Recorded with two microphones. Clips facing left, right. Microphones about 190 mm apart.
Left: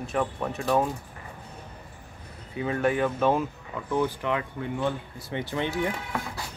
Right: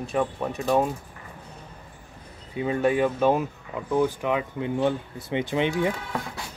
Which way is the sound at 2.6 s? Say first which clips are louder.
Right 3 dB; 20° right (ahead or behind).